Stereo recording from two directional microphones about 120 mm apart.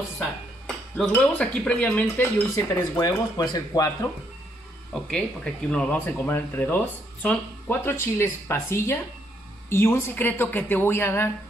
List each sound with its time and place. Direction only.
0.7 s speech: 5° left (ahead or behind); by 3.9 s 30° left (ahead or behind)
4.9 s speech: 5° left (ahead or behind)